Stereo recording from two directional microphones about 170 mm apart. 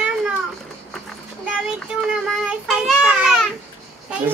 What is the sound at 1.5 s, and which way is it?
Child singing, 5° right (ahead or behind).